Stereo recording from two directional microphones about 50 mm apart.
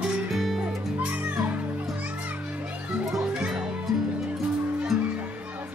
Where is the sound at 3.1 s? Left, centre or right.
Centre.